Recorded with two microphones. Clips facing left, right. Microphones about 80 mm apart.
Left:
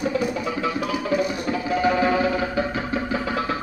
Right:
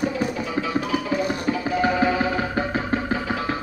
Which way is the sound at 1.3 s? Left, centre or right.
Right.